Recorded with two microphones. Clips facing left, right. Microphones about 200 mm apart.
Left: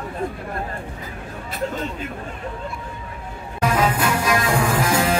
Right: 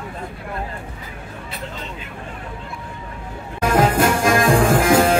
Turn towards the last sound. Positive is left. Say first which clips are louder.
# right 5 dB
turn(degrees=-55)  # may be behind; listen again after turning